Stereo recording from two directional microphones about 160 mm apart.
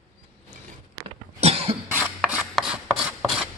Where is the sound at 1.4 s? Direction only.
40° right (ahead or behind).